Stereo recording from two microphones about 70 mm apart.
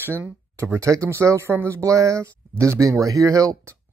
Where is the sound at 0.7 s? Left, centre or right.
Right.